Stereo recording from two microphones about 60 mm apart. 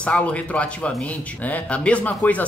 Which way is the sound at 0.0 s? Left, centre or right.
Left.